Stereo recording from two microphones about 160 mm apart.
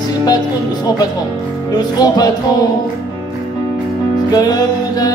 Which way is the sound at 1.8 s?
25° left (ahead or behind).